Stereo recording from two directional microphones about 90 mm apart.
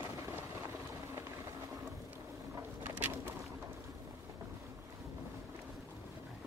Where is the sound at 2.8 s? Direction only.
20° right (ahead or behind).